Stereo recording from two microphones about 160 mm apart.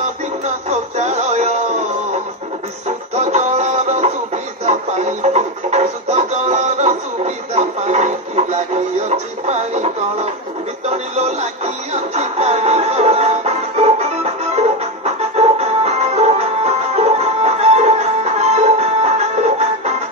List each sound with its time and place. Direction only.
0.7 s synthetic singing: 45° right (ahead or behind)
3.2 s music: 45° right (ahead or behind)